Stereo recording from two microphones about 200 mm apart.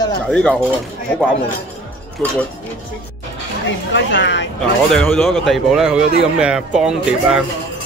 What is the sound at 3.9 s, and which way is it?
Speech, 65° left (ahead or behind).